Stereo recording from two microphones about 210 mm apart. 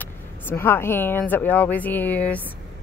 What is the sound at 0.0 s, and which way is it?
Speech, 10° left (ahead or behind).